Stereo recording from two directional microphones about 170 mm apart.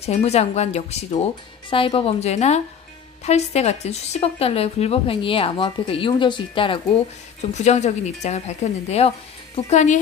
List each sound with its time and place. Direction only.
0.0 s speech: 40° left (ahead or behind)
7.5 s speech: 40° left (ahead or behind)